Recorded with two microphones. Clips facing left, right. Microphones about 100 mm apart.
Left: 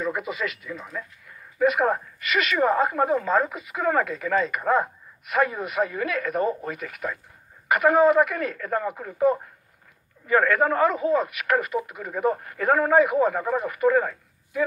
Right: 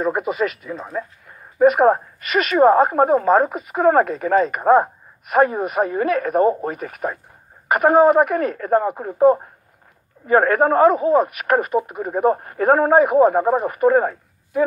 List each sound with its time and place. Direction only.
0.0 s speech: 40° right (ahead or behind)